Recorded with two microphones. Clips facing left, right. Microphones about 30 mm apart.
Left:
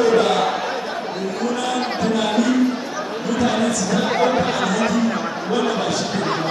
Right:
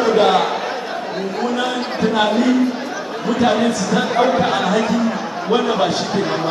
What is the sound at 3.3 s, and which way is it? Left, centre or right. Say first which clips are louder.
Speech: right 4 dB; right.